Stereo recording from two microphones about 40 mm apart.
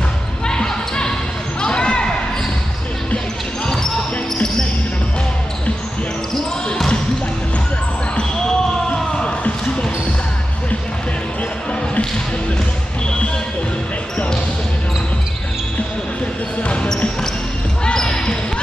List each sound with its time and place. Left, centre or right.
0.5 s basketball bounce: centre
3.6 s basketball bounce: centre
8.9 s basketball bounce: centre
14.1 s basketball bounce: left
17.9 s basketball bounce: centre